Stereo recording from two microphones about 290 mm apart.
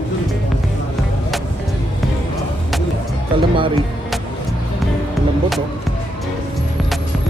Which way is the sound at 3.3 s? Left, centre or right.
Centre.